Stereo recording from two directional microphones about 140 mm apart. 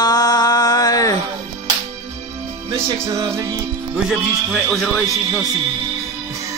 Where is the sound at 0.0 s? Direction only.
30° left (ahead or behind).